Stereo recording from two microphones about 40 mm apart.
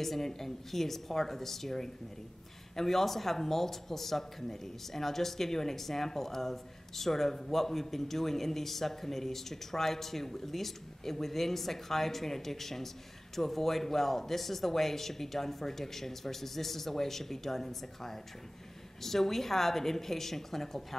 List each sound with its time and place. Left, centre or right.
0.0 s speech: centre